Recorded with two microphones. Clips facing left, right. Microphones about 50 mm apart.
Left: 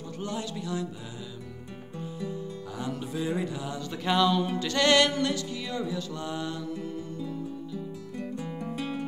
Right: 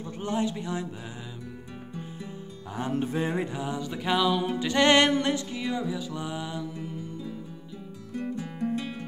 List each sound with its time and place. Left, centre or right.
0.2 s a man's voice: right
2.0 s music: right
2.8 s music: right; by 7.0 s centre
8.2 s music: centre
8.7 s music: centre